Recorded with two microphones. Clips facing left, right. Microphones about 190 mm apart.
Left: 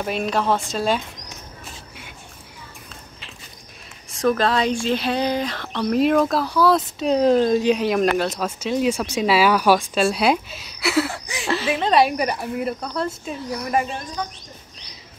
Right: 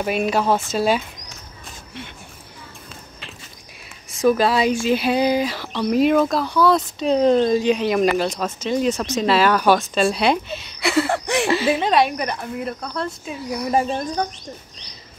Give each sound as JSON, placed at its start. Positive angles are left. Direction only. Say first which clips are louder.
{"t": 0.0, "sound": "speech", "louder": "right 2 dB", "side_deg": -5}
{"t": 4.2, "sound": "speech", "louder": "right 2 dB", "side_deg": -10}
{"t": 11.1, "sound": "speech", "louder": "right 10 dB", "side_deg": -65}
{"t": 11.4, "sound": "speech", "louder": "even", "side_deg": 0}
{"t": 13.7, "sound": "speech", "louder": "right 4 dB", "side_deg": -35}